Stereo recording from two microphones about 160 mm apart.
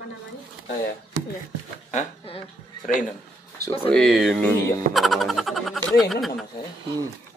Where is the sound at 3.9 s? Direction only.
5° left (ahead or behind).